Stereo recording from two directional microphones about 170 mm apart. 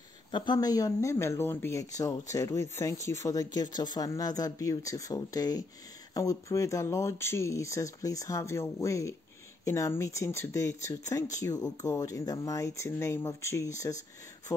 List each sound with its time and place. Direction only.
0.3 s speech: 25° left (ahead or behind)